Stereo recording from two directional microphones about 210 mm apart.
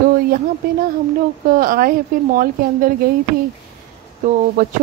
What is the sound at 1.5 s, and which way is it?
A woman's voice, 40° right (ahead or behind).